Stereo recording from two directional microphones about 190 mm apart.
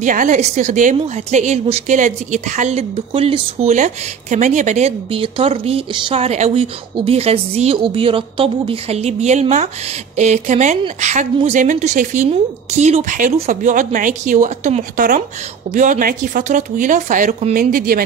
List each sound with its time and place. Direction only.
0.0 s speech: 45° right (ahead or behind)